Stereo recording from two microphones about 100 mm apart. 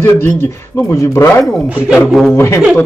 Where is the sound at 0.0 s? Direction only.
25° left (ahead or behind).